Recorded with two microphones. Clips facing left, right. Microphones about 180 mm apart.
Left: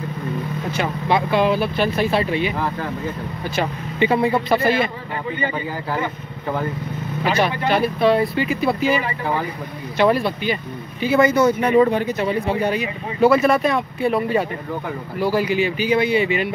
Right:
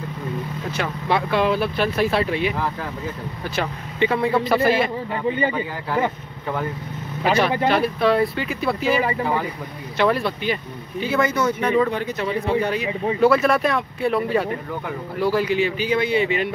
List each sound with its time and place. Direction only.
0.7 s speech: centre (ahead or behind)
7.2 s speech: centre (ahead or behind)
11.3 s speech: 35° left (ahead or behind)
11.9 s speech: 10° left (ahead or behind)